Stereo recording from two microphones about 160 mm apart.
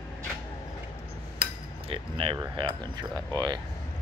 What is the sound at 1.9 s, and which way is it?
Speech, 35° right (ahead or behind).